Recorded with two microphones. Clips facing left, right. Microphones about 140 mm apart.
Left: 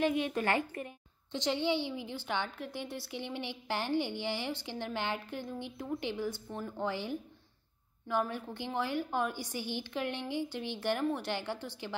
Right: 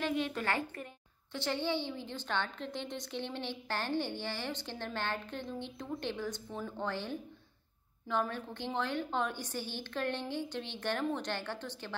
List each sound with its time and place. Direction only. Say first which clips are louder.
0.0 s a woman's voice: left 3 dB; 15° left (ahead or behind)